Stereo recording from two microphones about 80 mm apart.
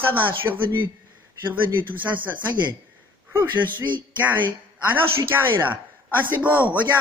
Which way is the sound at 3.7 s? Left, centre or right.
Right.